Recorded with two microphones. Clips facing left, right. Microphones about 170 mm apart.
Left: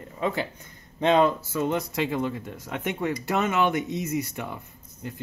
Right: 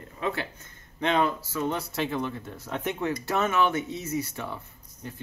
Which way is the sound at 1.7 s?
15° left (ahead or behind).